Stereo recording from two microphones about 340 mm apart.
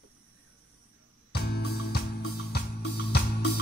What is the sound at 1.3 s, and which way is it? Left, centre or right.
Music, left.